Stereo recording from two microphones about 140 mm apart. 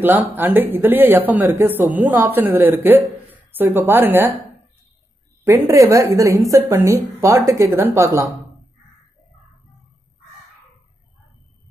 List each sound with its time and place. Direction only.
0.0 s speech: 15° right (ahead or behind)
5.4 s speech: 20° right (ahead or behind)